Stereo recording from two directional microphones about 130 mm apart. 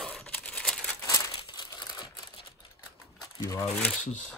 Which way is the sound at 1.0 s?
25° left (ahead or behind).